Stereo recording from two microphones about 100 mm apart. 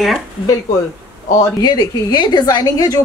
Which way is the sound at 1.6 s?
40° left (ahead or behind).